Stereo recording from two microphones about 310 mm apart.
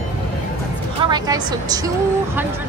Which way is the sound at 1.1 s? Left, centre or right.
Centre.